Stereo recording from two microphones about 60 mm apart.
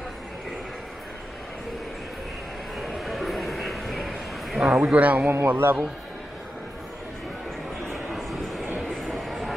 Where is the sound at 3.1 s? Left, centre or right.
Centre.